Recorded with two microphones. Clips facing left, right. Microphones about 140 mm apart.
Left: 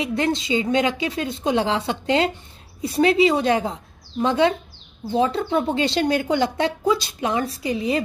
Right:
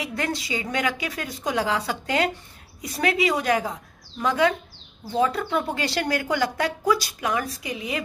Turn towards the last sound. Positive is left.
turn(degrees=35)  # may be behind; listen again after turning